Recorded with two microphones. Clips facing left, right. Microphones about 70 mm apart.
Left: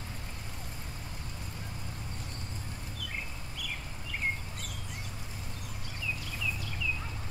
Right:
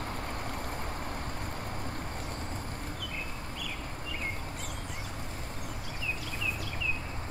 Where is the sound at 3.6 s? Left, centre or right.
Left.